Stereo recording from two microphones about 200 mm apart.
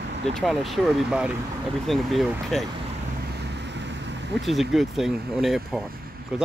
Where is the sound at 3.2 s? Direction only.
55° right (ahead or behind).